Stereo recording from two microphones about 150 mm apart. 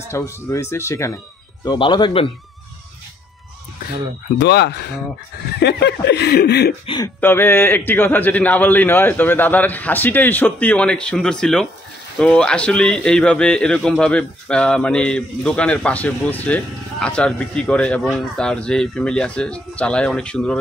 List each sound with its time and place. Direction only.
0.1 s speech: 20° left (ahead or behind)
5.7 s chuckle: 90° left
7.2 s a man's voice: 15° left (ahead or behind)